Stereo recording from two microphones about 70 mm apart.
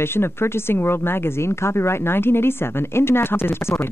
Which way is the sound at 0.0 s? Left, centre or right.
Left.